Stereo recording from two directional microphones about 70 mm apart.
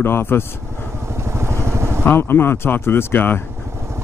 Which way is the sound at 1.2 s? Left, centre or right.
Right.